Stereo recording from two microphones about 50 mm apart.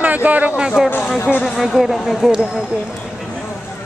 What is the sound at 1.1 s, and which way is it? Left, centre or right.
Speech, left.